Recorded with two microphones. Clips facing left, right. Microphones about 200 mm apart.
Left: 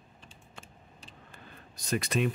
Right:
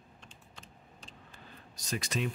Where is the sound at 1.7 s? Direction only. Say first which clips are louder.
Left 6 dB; 55° left (ahead or behind).